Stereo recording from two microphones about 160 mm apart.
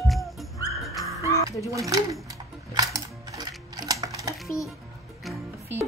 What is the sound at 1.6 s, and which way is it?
Speech, 20° right (ahead or behind).